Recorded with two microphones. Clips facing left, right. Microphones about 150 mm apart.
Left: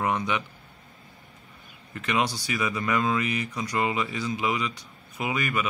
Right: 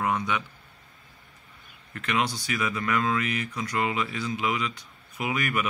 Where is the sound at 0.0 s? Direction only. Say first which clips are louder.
Left 1 dB; 10° left (ahead or behind).